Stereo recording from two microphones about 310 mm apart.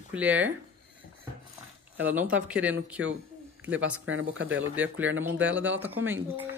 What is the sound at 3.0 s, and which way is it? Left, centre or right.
Speech, right.